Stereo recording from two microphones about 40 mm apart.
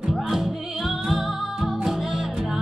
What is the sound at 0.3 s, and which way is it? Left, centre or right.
Music, centre.